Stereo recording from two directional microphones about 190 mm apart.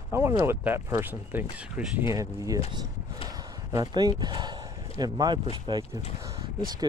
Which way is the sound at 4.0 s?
20° right (ahead or behind).